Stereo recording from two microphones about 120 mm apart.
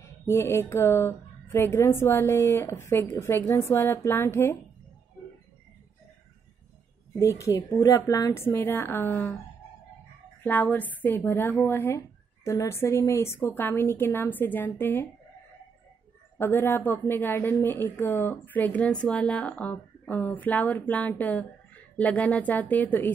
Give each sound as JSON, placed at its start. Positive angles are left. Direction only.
{"t": 0.0, "sound": "a woman's voice", "side_deg": 20}
{"t": 7.2, "sound": "a woman's voice", "side_deg": 25}
{"t": 10.4, "sound": "a woman's voice", "side_deg": 15}
{"t": 16.3, "sound": "a woman's voice", "side_deg": 20}